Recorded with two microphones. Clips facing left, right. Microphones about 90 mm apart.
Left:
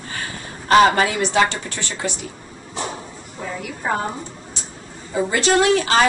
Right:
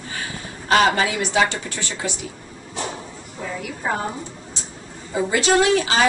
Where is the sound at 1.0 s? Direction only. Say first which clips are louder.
Left 2 dB; 5° right (ahead or behind).